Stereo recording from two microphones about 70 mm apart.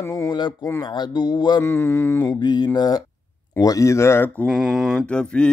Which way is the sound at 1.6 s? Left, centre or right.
Left.